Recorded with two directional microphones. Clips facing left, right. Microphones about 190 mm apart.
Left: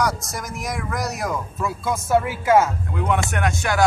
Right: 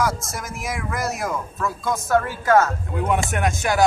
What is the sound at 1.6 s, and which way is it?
Speech, 15° left (ahead or behind).